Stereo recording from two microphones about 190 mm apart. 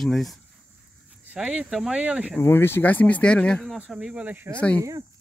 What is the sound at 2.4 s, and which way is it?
Speech, 10° left (ahead or behind).